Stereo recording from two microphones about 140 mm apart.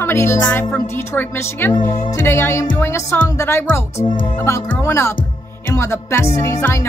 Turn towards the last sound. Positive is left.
turn(degrees=20)  # may be behind; listen again after turning